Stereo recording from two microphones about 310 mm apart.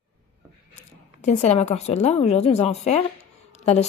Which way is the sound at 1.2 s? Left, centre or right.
Left.